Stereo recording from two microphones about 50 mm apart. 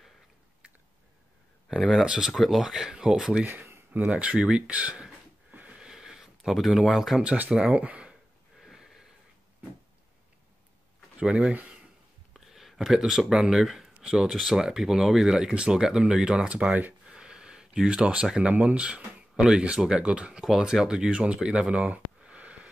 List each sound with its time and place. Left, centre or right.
1.8 s speech: centre; by 5.0 s right
5.5 s wheeze: right
5.8 s a sound: centre
6.7 s speech: centre
7.2 s speech: right
8.7 s wheeze: centre
11.1 s speech: right
12.4 s a sound: centre
13.4 s speech: centre
17.0 s gasp: centre
18.4 s speech: right
20.4 s speech: centre; by 22.7 s right